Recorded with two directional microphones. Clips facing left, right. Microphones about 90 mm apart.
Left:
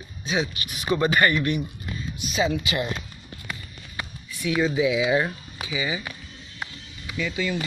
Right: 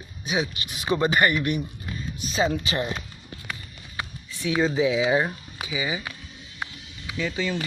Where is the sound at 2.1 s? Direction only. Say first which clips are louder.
Even; 35° right (ahead or behind).